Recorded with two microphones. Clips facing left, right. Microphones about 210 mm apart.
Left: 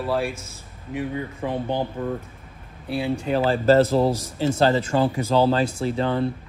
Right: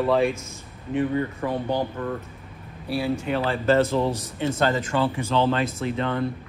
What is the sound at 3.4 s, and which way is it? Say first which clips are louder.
Speech: left 4 dB; 35° left (ahead or behind).